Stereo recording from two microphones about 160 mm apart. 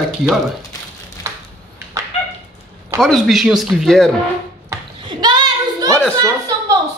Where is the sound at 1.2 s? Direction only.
20° right (ahead or behind).